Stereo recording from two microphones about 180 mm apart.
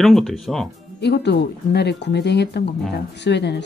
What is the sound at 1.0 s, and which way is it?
Speech, 65° left (ahead or behind).